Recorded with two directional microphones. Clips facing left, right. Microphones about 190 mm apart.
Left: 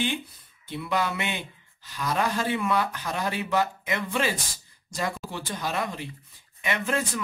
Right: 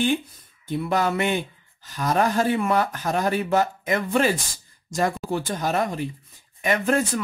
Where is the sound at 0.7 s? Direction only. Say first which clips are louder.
Right 5 dB; 45° right (ahead or behind).